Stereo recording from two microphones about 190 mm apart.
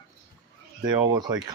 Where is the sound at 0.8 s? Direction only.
20° right (ahead or behind).